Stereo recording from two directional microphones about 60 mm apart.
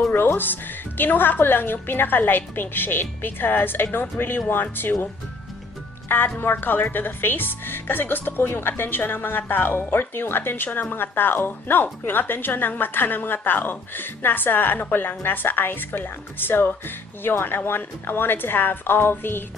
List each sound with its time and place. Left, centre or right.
0.1 s speech: left
6.0 s speech: left